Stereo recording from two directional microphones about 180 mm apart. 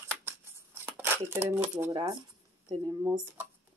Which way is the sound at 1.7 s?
20° right (ahead or behind).